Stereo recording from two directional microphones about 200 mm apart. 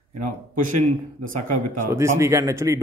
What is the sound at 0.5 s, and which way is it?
Speech, 40° right (ahead or behind).